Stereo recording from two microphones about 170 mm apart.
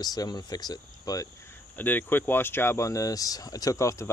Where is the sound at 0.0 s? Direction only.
20° left (ahead or behind).